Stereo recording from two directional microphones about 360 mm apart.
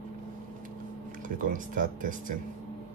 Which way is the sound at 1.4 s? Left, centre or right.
Right.